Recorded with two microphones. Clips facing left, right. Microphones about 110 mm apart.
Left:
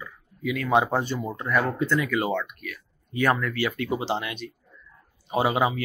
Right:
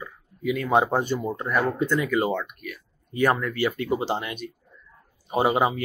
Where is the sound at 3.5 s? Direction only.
35° right (ahead or behind).